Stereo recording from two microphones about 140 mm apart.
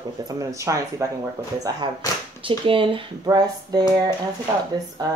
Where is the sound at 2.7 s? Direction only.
40° right (ahead or behind).